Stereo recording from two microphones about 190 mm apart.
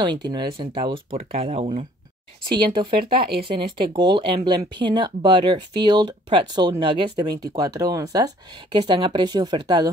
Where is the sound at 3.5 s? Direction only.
25° right (ahead or behind).